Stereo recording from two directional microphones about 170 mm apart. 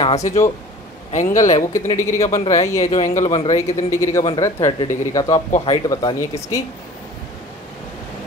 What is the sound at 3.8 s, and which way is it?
Speech, 15° left (ahead or behind).